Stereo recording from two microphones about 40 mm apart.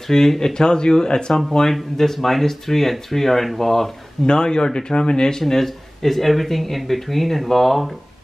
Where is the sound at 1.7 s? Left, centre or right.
Centre.